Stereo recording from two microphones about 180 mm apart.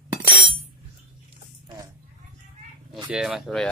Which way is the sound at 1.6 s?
20° right (ahead or behind).